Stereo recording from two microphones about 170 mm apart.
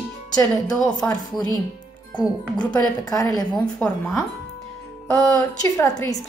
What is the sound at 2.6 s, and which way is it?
Speech, 20° left (ahead or behind).